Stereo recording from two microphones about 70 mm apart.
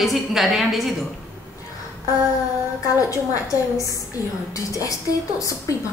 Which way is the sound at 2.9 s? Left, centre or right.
Left.